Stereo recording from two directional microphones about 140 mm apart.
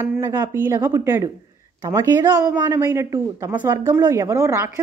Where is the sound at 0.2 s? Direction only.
25° right (ahead or behind).